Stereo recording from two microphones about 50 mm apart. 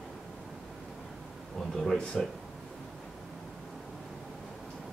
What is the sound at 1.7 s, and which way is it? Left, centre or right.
Speech, centre.